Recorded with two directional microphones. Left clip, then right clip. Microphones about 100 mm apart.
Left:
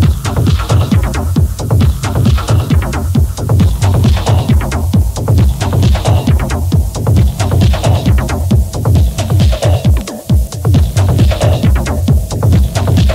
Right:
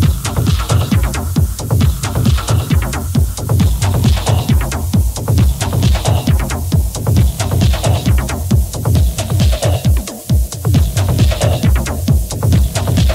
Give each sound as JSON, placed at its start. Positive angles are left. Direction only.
{"t": 0.0, "sound": "music", "side_deg": 25}